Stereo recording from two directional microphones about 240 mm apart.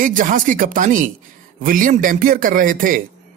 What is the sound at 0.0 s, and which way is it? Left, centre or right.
Speech, right.